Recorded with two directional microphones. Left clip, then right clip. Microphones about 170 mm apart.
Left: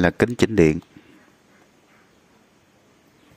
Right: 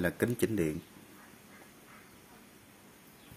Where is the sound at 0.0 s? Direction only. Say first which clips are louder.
Left 12 dB; 60° left (ahead or behind).